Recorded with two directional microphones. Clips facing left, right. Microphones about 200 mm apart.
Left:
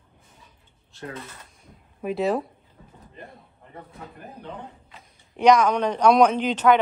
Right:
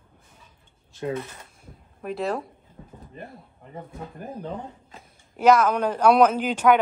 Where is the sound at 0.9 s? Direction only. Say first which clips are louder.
Right 8 dB; 15° right (ahead or behind).